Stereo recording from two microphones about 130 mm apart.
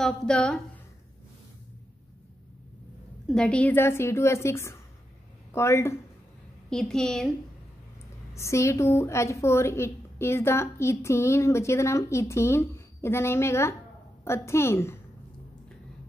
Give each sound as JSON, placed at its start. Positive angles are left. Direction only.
{"t": 0.0, "sound": "a woman's voice", "side_deg": 5}
{"t": 3.3, "sound": "a woman's voice", "side_deg": 5}
{"t": 6.7, "sound": "a woman's voice", "side_deg": 5}
{"t": 8.4, "sound": "a woman's voice", "side_deg": 20}